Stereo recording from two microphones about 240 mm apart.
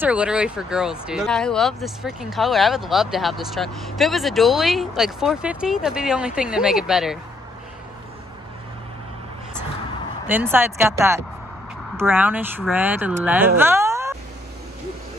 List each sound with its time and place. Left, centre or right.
0.0 s speech: centre
10.2 s speech: centre
13.6 s a sound: centre